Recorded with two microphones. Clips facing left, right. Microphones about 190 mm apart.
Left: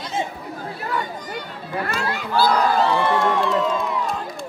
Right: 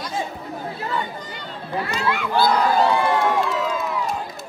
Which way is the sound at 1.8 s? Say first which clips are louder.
Right 1 dB; 45° left (ahead or behind).